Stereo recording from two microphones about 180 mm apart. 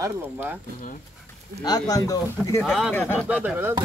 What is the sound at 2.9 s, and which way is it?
Speech, 10° left (ahead or behind).